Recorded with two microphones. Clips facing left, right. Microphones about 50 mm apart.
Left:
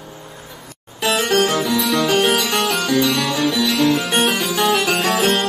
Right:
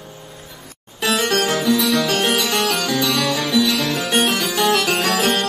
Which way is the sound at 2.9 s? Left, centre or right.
Left.